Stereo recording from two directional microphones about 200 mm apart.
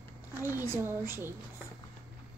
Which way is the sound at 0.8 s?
10° right (ahead or behind).